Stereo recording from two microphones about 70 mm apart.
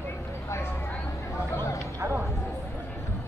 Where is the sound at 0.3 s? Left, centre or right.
Left.